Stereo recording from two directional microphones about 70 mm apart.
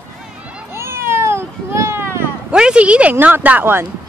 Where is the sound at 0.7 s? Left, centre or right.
Right.